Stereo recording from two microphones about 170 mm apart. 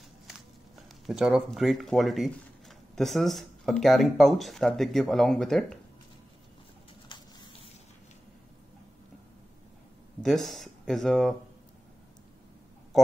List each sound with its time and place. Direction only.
1.0 s speech: 5° right (ahead or behind)
7.1 s a sound: 30° left (ahead or behind)
10.2 s speech: centre (ahead or behind)